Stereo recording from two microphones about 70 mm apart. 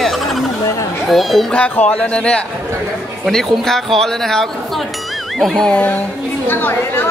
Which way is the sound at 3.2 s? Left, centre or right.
Centre.